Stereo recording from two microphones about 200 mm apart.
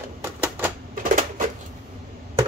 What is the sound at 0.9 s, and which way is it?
Music, 40° right (ahead or behind).